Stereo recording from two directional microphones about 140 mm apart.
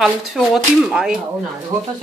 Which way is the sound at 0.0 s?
Centre (ahead or behind).